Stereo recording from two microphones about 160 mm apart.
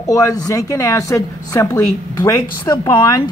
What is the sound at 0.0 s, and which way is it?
A woman's voice, 20° left (ahead or behind).